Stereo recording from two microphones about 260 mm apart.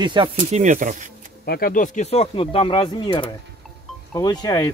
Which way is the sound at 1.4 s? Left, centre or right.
Left.